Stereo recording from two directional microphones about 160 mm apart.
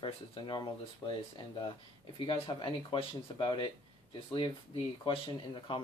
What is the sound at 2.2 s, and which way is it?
Speech, 30° left (ahead or behind).